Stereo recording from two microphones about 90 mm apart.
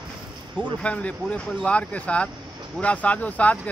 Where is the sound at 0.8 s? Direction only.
15° left (ahead or behind).